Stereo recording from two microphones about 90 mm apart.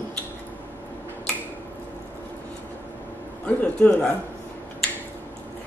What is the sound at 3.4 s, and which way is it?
Speech, 15° left (ahead or behind).